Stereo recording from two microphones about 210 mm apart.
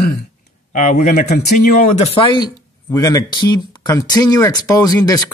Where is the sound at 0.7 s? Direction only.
35° left (ahead or behind).